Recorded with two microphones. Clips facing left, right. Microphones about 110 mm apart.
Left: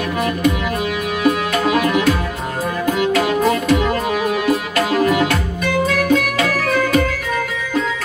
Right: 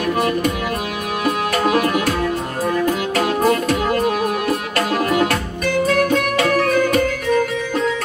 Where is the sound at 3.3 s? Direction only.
40° right (ahead or behind).